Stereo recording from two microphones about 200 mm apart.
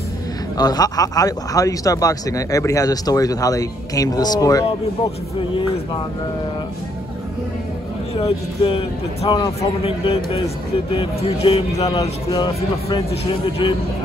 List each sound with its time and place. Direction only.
0.6 s speech: 20° left (ahead or behind)
8.2 s a man's voice: 25° left (ahead or behind)
11.7 s a man's voice: 20° left (ahead or behind)